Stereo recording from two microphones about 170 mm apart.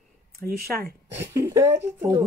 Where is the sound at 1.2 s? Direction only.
15° right (ahead or behind).